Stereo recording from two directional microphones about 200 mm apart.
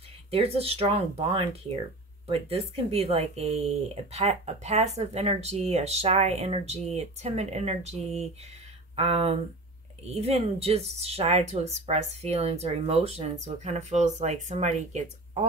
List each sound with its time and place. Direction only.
0.3 s speech: 30° right (ahead or behind)